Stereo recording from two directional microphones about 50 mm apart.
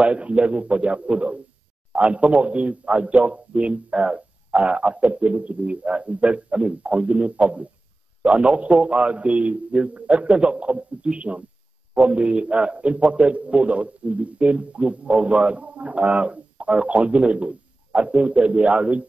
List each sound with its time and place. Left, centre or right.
0.0 s a man's voice: right